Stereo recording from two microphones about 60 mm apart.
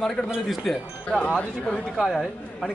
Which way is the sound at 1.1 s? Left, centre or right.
Centre.